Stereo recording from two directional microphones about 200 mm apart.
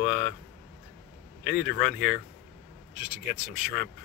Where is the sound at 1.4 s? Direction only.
50° left (ahead or behind).